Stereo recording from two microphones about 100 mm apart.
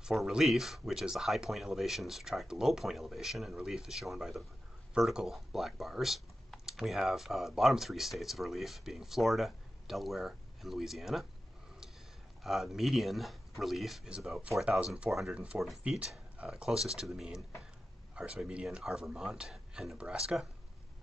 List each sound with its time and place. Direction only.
0.0 s speech: 5° right (ahead or behind)
12.4 s speech: centre (ahead or behind)